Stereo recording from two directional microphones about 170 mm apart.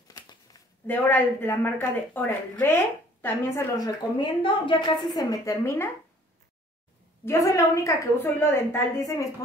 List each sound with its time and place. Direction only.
0.1 s shuffling cards: 20° left (ahead or behind)
0.8 s a woman's voice: 10° left (ahead or behind)
7.2 s speech: 20° left (ahead or behind)